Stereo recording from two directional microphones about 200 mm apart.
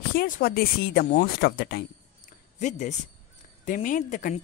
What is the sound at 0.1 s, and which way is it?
Speech, 50° left (ahead or behind).